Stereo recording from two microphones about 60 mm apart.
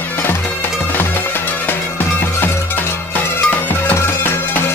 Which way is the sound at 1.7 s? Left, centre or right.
Left.